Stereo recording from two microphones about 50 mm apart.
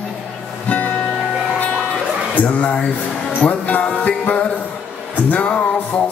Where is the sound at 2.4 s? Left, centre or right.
Left.